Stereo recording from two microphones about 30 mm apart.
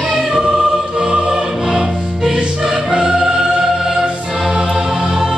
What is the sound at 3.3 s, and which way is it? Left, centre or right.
Music, centre.